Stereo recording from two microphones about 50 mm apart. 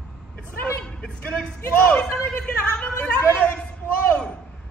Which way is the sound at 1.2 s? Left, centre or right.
Left.